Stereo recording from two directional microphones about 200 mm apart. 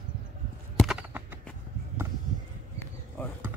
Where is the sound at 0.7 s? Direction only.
5° right (ahead or behind).